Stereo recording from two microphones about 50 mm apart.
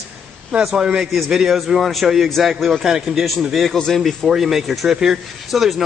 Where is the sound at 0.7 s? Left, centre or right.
Centre.